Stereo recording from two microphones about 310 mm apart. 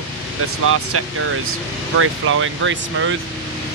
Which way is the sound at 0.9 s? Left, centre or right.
Right.